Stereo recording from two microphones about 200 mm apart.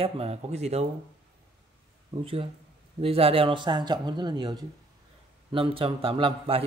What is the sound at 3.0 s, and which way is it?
Speech, 30° right (ahead or behind).